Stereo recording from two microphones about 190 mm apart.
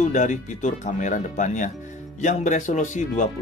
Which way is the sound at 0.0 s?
40° left (ahead or behind).